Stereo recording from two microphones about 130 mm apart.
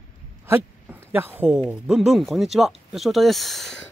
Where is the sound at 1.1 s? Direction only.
15° right (ahead or behind).